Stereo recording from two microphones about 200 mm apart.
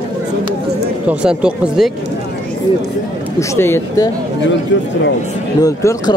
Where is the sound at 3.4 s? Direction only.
15° left (ahead or behind).